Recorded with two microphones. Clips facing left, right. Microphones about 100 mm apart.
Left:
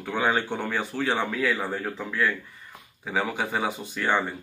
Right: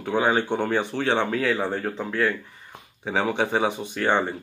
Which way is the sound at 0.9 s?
55° right (ahead or behind).